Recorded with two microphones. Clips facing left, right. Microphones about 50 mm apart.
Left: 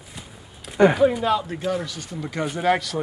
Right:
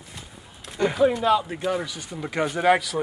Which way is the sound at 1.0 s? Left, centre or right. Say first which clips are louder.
Even; centre.